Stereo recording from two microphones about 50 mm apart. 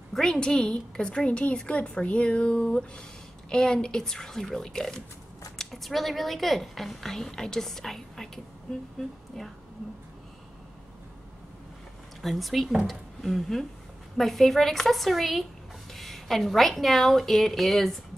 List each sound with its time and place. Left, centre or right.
0.1 s a woman's voice: centre
12.2 s a woman's voice: centre